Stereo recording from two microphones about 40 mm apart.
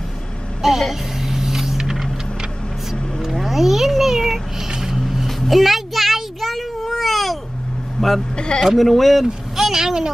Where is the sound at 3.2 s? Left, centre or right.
Centre.